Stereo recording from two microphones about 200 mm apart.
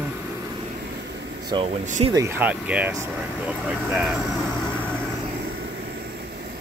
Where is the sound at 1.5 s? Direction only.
20° right (ahead or behind); by 4.1 s 5° right (ahead or behind).